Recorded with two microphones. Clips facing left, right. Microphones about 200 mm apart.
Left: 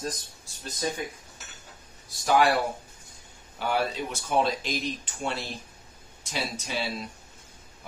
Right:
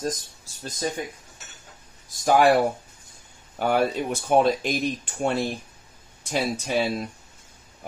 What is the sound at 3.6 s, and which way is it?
Speech, 50° right (ahead or behind).